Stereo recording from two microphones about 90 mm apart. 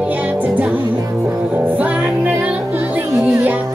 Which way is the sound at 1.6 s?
15° right (ahead or behind).